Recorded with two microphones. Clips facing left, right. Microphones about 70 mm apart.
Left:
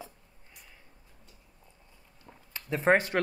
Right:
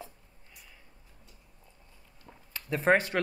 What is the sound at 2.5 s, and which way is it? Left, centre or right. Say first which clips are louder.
Speech: left 1 dB; left.